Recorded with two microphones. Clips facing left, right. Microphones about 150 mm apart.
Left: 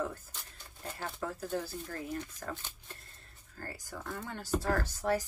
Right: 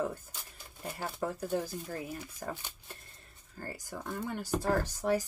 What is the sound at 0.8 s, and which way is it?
Speech, 15° right (ahead or behind).